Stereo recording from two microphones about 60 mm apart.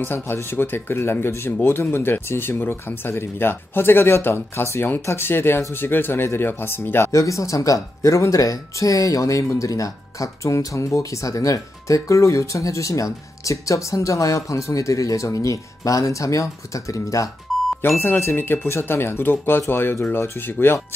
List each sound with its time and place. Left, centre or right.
0.0 s speech: left
7.1 s speech: left
17.8 s speech: left